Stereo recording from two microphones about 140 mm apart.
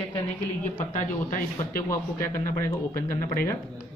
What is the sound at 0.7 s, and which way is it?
Speech, 70° left (ahead or behind).